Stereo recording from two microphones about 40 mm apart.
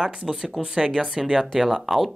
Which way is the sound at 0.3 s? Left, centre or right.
Centre.